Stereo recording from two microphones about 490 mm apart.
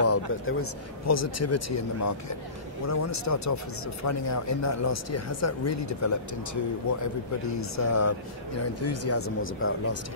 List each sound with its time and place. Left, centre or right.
0.0 s speech: left